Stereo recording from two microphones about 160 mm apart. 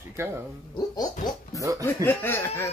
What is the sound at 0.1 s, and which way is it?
Speech, 15° right (ahead or behind).